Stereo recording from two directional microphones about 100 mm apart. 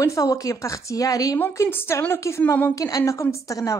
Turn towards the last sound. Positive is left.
turn(degrees=35)  # may be behind; listen again after turning